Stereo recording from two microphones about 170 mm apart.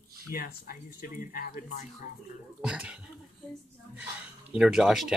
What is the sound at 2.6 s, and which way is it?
Speech, 5° right (ahead or behind).